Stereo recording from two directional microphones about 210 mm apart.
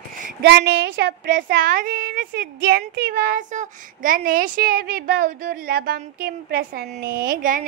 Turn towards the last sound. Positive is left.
turn(degrees=-40)  # may be behind; listen again after turning